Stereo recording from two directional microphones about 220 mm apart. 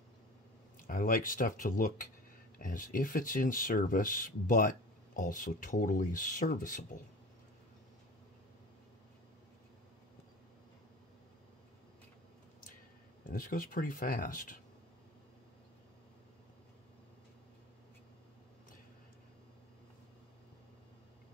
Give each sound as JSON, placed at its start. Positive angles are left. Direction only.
{"t": 0.8, "sound": "speech", "side_deg": 40}
{"t": 13.3, "sound": "speech", "side_deg": 40}